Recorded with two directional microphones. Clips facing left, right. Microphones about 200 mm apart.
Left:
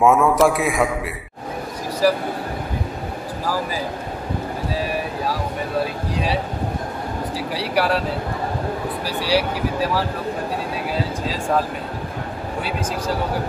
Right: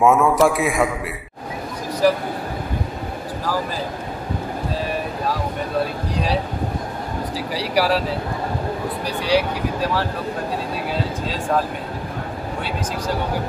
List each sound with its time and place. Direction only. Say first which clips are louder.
0.0 s a man's voice: even; centre (ahead or behind)
7.3 s a man's voice: right 1 dB; centre (ahead or behind)